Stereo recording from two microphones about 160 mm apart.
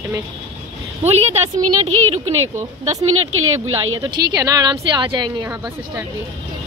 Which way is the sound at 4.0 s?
20° right (ahead or behind).